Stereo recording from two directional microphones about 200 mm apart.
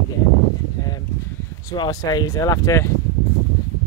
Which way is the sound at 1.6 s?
20° left (ahead or behind).